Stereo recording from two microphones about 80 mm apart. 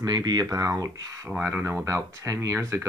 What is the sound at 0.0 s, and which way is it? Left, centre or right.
Speech, right.